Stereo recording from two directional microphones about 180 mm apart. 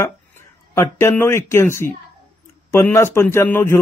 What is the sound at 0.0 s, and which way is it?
A man's voice, 15° left (ahead or behind).